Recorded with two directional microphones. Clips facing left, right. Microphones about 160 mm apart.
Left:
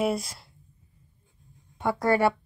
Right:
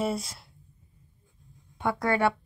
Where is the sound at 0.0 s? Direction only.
10° left (ahead or behind).